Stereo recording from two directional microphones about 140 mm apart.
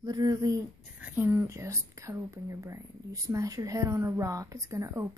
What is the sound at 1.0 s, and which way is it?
Speech, 10° right (ahead or behind).